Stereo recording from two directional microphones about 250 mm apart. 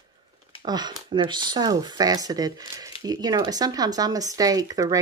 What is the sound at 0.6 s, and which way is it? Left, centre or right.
Speech, centre.